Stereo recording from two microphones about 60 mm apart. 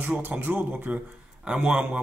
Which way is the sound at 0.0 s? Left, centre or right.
Right.